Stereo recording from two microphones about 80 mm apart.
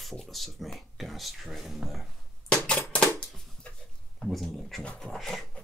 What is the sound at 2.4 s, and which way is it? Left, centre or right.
Typewriter, centre.